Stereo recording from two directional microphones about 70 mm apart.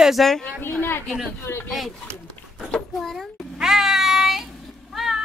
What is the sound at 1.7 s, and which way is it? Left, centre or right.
Speech, centre.